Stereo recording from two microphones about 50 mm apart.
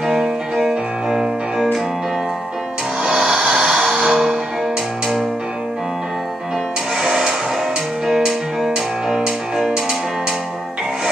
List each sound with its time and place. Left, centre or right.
0.0 s music: centre
3.0 s music: centre
7.0 s music: centre